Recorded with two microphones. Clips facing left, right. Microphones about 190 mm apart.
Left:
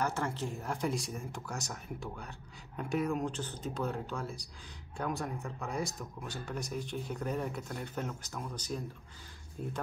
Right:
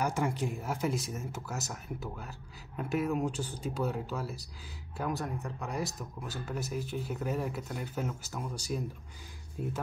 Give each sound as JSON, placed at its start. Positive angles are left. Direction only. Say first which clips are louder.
{"t": 0.0, "sound": "speech", "louder": "right 3 dB", "side_deg": -10}